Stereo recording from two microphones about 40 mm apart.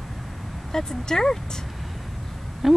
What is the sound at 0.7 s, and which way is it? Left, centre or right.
Speech, centre.